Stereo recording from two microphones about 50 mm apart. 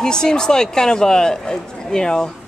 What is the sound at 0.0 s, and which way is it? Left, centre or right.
Speech, centre.